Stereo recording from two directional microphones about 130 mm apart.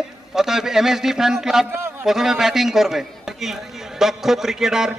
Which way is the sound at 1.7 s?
15° right (ahead or behind).